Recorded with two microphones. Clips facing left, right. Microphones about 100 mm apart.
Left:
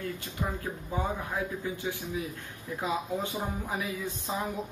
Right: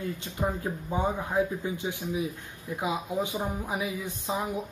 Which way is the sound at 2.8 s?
15° right (ahead or behind).